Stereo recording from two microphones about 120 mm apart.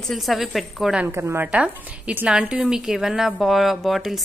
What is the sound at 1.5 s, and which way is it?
A woman's voice, 10° right (ahead or behind).